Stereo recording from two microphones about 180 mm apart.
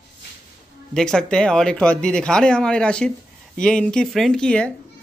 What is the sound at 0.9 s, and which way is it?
Speech, 5° left (ahead or behind).